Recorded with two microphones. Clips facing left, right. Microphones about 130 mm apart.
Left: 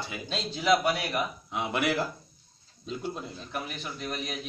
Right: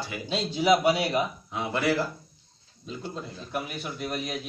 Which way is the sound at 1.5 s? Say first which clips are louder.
Right 2 dB; 20° left (ahead or behind).